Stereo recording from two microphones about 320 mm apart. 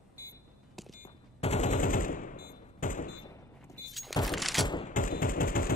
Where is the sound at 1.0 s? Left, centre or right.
Left.